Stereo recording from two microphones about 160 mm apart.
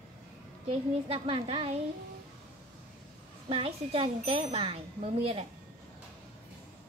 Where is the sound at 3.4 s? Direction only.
35° right (ahead or behind).